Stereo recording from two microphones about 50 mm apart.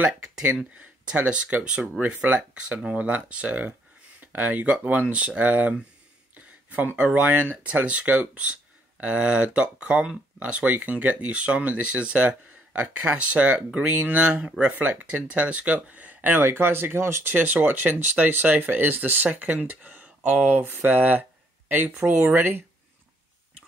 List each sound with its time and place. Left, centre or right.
1.1 s speech: right
6.3 s a sound: right
7.2 s speech: right
16.2 s speech: right
20.6 s speech: right